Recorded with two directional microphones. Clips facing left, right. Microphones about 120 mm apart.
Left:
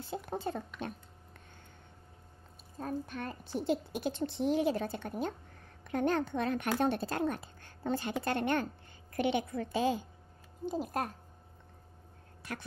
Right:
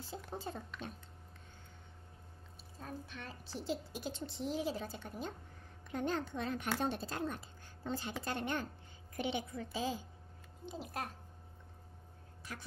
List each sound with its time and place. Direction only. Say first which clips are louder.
0.0 s a woman's voice: left 7 dB; 60° left (ahead or behind)
2.8 s a woman's voice: left 9 dB; 50° left (ahead or behind)
10.6 s speech: left 9 dB; 45° left (ahead or behind)
12.5 s a woman's voice: left 7 dB; 65° left (ahead or behind)